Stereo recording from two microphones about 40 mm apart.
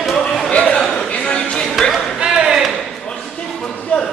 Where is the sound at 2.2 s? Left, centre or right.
Centre.